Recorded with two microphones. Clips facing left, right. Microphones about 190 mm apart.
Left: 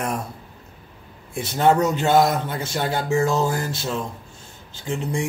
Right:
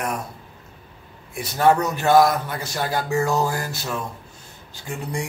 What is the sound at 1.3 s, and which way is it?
A man's voice, 25° left (ahead or behind).